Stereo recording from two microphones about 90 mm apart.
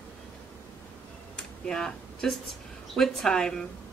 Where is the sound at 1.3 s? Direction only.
5° left (ahead or behind).